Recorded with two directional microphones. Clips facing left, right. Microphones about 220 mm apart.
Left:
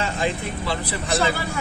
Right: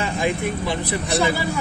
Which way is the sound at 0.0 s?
15° right (ahead or behind).